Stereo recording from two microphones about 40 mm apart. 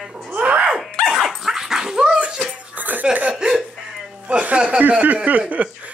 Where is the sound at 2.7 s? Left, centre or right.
Right.